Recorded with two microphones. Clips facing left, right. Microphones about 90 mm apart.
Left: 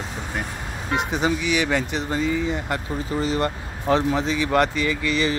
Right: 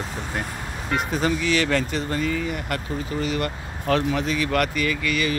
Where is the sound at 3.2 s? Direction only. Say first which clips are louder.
Left 3 dB; 30° left (ahead or behind).